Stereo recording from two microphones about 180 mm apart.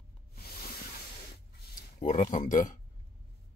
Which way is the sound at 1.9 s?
40° left (ahead or behind).